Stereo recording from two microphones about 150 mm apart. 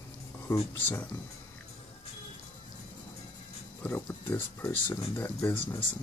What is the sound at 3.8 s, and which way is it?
Speech, 15° left (ahead or behind).